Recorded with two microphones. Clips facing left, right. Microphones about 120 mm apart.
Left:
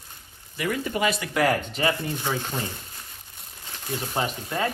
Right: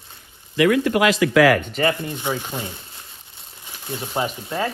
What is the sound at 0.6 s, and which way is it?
Speech, 90° right.